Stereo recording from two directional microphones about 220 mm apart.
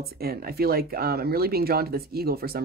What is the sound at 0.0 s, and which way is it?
Speech, 45° right (ahead or behind).